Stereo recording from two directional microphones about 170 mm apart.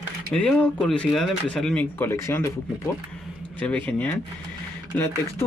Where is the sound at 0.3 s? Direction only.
5° left (ahead or behind).